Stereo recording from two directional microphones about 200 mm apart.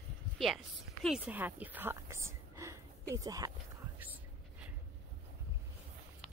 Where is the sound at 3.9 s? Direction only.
10° right (ahead or behind).